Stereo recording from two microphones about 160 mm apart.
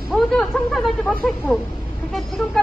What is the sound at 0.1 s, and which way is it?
Speech, centre (ahead or behind).